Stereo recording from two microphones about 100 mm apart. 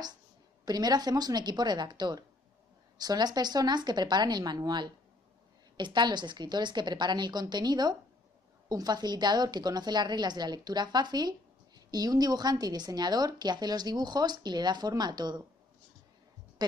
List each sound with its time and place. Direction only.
0.7 s a woman's voice: 40° right (ahead or behind)